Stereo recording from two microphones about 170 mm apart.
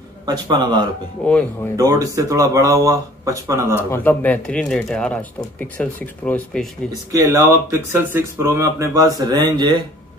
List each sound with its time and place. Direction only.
0.3 s speech: 25° right (ahead or behind)
1.2 s speech: 5° left (ahead or behind)
1.8 s speech: 20° right (ahead or behind)
3.9 s speech: 10° left (ahead or behind)
6.9 s speech: 20° right (ahead or behind)